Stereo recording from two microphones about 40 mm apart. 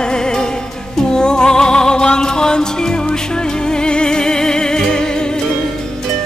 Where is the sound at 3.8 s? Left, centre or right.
Left.